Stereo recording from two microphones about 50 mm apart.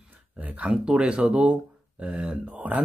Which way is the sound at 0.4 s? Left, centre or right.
Right.